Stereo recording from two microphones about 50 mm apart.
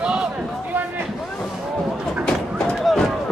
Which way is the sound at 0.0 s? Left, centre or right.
Centre.